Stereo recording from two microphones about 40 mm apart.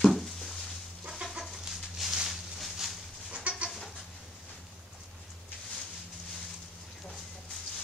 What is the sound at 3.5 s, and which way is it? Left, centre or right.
Goat, right.